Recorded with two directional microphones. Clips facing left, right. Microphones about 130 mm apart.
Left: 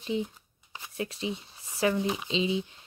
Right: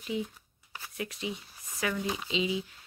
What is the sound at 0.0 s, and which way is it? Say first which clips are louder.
Speech: left 3 dB; 25° left (ahead or behind).